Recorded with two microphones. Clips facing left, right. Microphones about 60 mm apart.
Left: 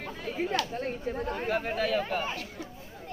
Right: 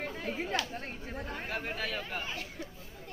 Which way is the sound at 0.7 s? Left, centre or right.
Centre.